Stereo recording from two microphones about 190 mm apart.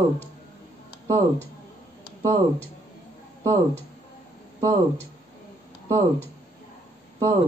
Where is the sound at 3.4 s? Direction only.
15° right (ahead or behind).